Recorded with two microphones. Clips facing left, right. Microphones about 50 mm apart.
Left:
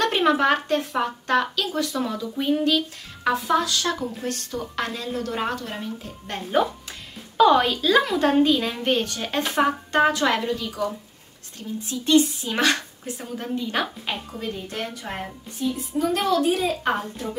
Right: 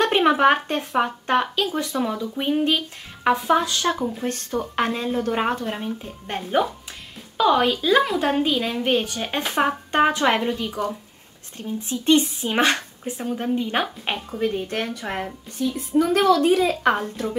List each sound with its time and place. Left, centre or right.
0.0 s speech: right
7.3 s a woman's voice: centre; by 14.5 s right
14.5 s speech: right
16.2 s a woman's voice: right
16.4 s speech: right